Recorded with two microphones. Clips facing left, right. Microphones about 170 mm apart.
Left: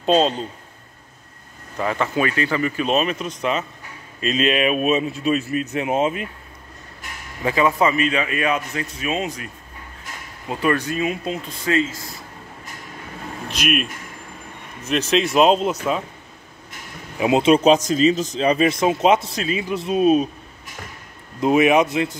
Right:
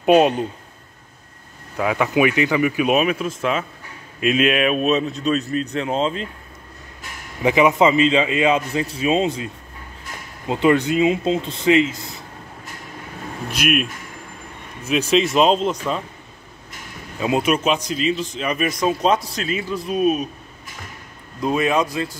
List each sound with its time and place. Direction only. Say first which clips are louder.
0.0 s speech: right 3 dB; 15° right (ahead or behind)
1.8 s speech: right 3 dB; 10° right (ahead or behind); by 6.2 s 10° left (ahead or behind)
7.4 s speech: right 3 dB; 20° right (ahead or behind)
10.5 s speech: right 5 dB; 20° right (ahead or behind)
15.0 s speech: left 1 dB; centre (ahead or behind)
17.2 s a man's voice: left 4 dB; 25° left (ahead or behind)
21.4 s a man's voice: left 4 dB; 20° left (ahead or behind)